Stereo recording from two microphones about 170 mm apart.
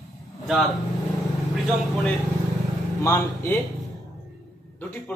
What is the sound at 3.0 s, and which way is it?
Speech, 15° left (ahead or behind).